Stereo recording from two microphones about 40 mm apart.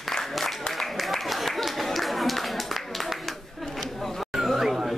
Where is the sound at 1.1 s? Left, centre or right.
Centre.